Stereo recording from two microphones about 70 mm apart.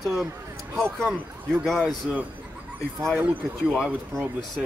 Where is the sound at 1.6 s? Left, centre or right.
Centre.